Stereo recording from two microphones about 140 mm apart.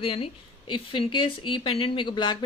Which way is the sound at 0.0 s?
40° left (ahead or behind).